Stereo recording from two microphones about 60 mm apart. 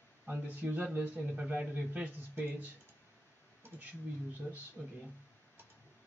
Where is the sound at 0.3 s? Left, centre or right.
Right.